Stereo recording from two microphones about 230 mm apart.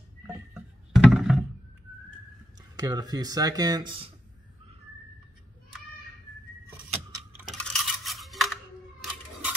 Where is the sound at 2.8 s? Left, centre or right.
Centre.